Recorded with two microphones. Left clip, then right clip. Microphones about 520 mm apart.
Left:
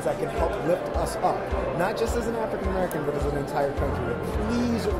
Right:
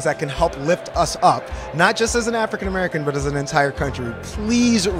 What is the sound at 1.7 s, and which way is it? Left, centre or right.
Speech, right.